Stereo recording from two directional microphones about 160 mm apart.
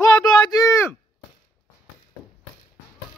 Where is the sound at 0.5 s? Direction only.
20° left (ahead or behind).